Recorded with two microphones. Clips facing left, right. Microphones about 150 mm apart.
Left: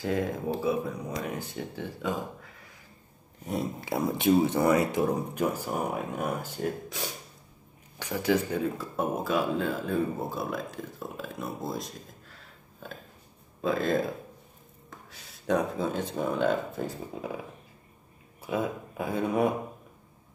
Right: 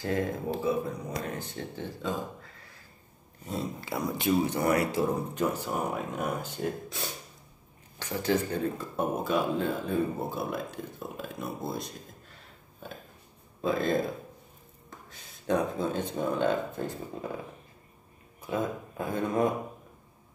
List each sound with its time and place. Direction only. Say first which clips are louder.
0.0 s speech: left 1 dB; 15° left (ahead or behind)
3.9 s speech: left 4 dB; 25° left (ahead or behind); by 11.9 s centre (ahead or behind)
13.6 s speech: left 1 dB; centre (ahead or behind)
18.5 s speech: left 1 dB; 10° left (ahead or behind)